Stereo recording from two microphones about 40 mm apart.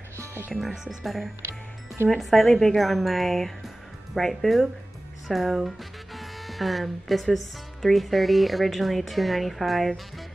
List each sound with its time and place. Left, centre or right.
0.6 s speech: centre
6.1 s music: centre
7.8 s speech: centre